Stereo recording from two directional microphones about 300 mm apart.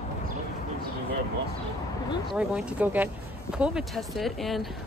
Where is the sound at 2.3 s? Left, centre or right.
Centre.